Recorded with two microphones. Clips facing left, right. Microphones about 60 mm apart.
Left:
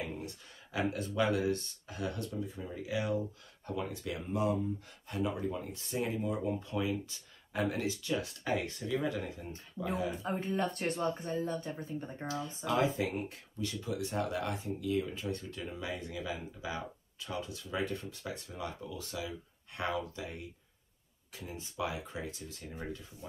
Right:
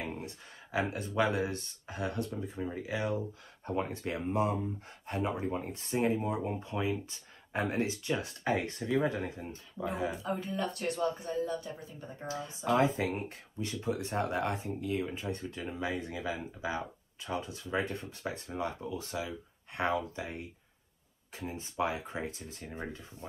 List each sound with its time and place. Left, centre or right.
0.0 s speech: right
10.2 s speech: left
12.3 s speech: right